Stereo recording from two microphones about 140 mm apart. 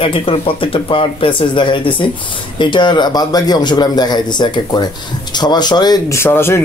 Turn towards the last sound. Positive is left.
turn(degrees=15)  # may be behind; listen again after turning